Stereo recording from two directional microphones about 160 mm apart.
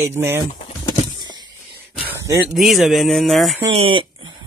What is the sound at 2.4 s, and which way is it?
Speech, centre (ahead or behind).